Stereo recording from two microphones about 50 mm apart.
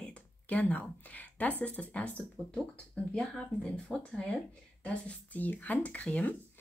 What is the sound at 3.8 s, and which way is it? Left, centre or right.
A woman's voice, left.